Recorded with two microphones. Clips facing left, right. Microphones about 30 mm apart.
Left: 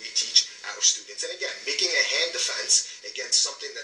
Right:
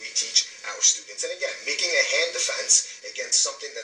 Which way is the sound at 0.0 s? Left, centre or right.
Left.